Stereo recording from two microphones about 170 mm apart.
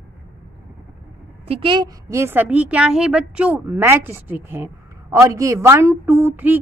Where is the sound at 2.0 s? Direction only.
15° right (ahead or behind).